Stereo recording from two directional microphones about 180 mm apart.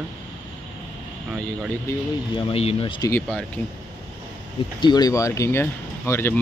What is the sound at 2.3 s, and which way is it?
Speech, 30° left (ahead or behind).